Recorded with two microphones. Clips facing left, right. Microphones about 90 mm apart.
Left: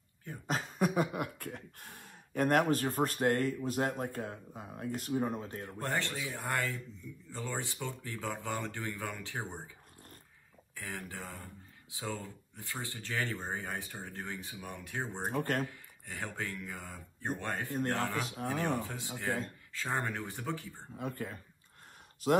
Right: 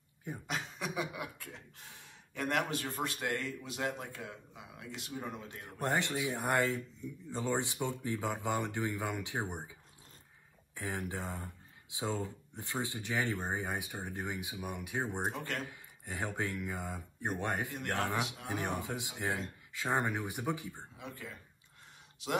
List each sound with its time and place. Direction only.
0.5 s a sound: 45° left (ahead or behind)
2.7 s speech: 45° left (ahead or behind)
5.8 s speech: 20° right (ahead or behind)
10.7 s speech: 20° right (ahead or behind)
15.3 s speech: 45° left (ahead or behind)
16.1 s speech: 20° right (ahead or behind)
20.9 s speech: 50° left (ahead or behind)